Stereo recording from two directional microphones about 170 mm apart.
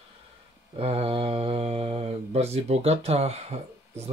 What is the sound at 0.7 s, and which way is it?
Mantra, 35° right (ahead or behind).